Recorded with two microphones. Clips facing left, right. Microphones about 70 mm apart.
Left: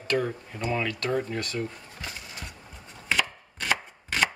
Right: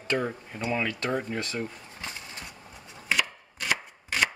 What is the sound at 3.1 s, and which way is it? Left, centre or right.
Chopping, centre.